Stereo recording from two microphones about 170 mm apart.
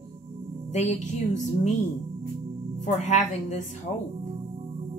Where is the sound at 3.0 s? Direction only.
40° left (ahead or behind).